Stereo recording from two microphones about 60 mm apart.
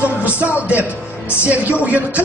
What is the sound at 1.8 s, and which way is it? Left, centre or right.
Speech, right.